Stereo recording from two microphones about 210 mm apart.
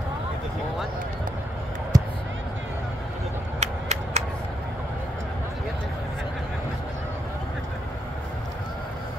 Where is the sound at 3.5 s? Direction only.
30° right (ahead or behind).